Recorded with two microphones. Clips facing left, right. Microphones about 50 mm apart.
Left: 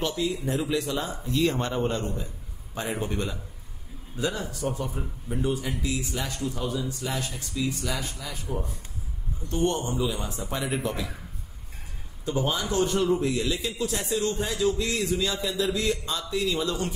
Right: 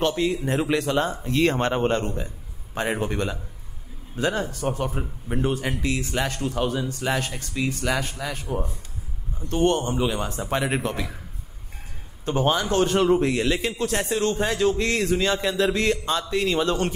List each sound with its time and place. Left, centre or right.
0.0 s a man's voice: right
12.3 s a man's voice: right